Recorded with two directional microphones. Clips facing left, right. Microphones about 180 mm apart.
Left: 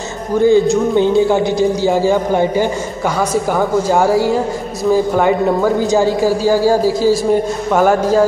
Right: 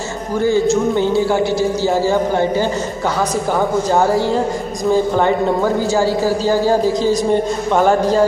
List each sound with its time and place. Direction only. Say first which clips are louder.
0.5 s speech: left 2 dB; 20° left (ahead or behind)
3.9 s speech: left 2 dB; 10° left (ahead or behind)
5.9 s speech: left 2 dB; 15° left (ahead or behind)